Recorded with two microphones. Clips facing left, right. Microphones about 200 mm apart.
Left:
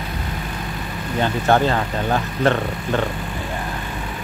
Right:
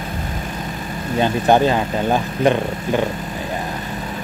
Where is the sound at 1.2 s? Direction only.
15° right (ahead or behind).